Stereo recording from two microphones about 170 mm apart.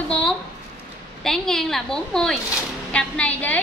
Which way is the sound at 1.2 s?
5° left (ahead or behind).